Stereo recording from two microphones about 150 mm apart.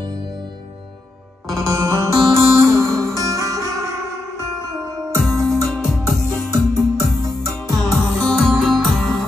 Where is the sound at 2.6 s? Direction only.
20° right (ahead or behind).